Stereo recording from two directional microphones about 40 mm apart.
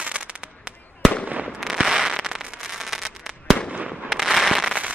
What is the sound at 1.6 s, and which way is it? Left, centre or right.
Fireworks, centre.